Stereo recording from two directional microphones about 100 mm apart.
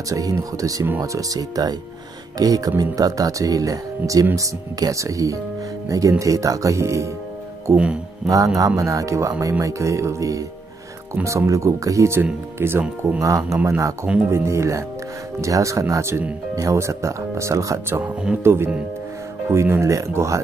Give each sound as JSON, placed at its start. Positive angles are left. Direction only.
{"t": 0.1, "sound": "speech", "side_deg": -35}
{"t": 7.7, "sound": "speech", "side_deg": -10}
{"t": 8.5, "sound": "speech", "side_deg": -35}
{"t": 14.0, "sound": "speech", "side_deg": -15}
{"t": 14.3, "sound": "speech", "side_deg": -25}